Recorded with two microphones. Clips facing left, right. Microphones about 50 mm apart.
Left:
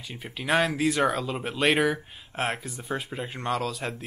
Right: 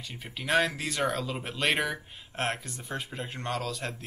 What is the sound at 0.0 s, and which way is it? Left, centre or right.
Speech, centre.